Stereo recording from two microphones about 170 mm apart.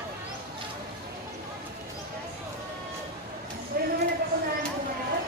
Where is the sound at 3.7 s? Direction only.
60° right (ahead or behind).